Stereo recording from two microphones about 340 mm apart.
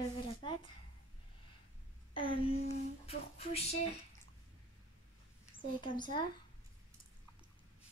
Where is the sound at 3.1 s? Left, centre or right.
Centre.